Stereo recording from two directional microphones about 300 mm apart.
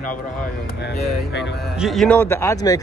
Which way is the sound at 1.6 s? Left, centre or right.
Centre.